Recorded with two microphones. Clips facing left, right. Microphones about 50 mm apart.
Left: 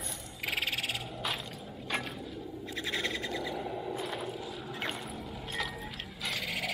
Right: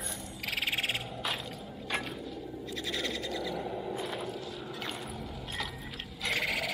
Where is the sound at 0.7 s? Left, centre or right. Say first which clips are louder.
Right 3 dB; right.